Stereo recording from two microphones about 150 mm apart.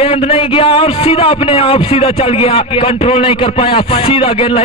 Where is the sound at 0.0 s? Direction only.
40° left (ahead or behind).